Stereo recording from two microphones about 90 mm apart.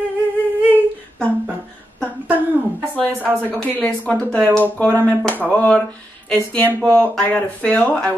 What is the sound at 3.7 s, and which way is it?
A woman's voice, 15° left (ahead or behind).